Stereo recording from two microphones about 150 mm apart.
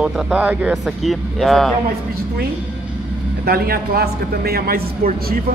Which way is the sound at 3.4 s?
90° right.